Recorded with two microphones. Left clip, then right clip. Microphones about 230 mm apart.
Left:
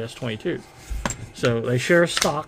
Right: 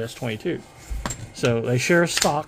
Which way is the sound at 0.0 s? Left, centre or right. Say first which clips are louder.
Even; centre.